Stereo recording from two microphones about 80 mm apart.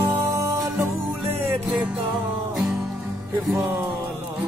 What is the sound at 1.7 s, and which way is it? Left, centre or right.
Music, centre.